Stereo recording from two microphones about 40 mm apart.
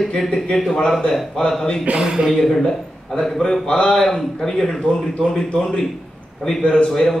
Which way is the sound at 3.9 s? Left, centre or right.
Centre.